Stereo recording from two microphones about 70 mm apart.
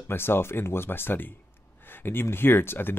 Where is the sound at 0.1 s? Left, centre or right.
Left.